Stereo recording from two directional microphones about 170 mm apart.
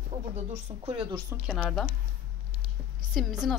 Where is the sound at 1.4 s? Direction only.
Centre (ahead or behind).